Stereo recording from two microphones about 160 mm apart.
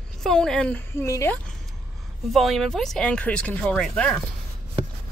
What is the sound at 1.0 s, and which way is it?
Speech, 20° left (ahead or behind).